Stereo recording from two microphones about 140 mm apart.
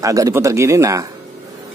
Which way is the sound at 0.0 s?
25° right (ahead or behind).